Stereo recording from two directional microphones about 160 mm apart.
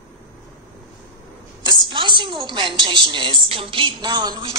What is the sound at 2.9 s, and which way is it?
A woman's voice, 30° right (ahead or behind).